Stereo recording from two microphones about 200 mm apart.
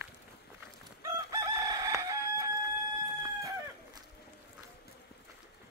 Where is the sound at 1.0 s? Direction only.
15° right (ahead or behind).